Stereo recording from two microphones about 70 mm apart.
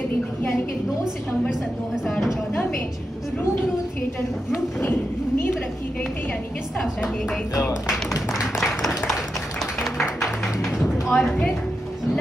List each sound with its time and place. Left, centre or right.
6.8 s a woman's voice: centre
10.6 s a sound: centre
11.1 s speech: left